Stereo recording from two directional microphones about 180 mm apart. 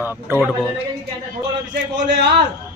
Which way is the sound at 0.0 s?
10° right (ahead or behind).